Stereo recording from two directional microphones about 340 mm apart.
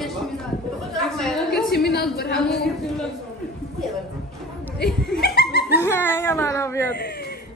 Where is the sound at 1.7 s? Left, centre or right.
Left.